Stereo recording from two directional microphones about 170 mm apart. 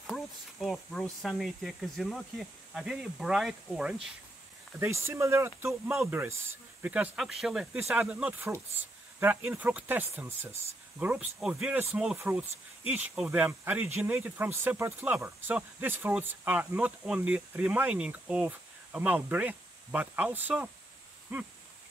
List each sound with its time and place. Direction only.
0.0 s speech: centre (ahead or behind)
4.7 s speech: 15° right (ahead or behind)